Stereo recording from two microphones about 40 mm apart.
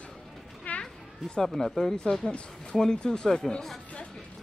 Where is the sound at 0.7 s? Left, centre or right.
Left.